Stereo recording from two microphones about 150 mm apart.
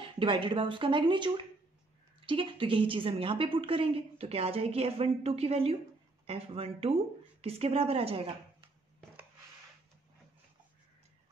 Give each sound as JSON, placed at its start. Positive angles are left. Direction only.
{"t": 0.0, "sound": "a woman's voice", "side_deg": -35}